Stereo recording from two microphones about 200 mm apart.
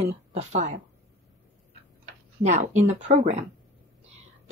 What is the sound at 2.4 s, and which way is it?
Speech, 35° right (ahead or behind).